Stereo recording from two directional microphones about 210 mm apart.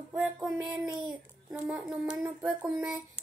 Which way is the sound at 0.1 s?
5° right (ahead or behind).